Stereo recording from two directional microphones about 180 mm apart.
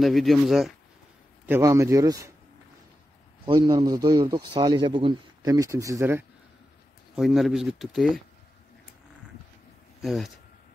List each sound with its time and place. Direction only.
0.0 s speech: centre (ahead or behind)
1.4 s a man's voice: 15° right (ahead or behind)
3.4 s speech: 25° right (ahead or behind)
7.2 s speech: centre (ahead or behind)
10.0 s speech: centre (ahead or behind)